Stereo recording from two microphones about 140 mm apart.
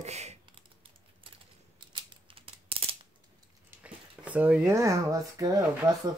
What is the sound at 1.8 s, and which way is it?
Scissors, 35° right (ahead or behind).